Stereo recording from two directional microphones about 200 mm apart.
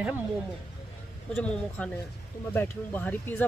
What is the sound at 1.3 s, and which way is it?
Speech, 5° left (ahead or behind).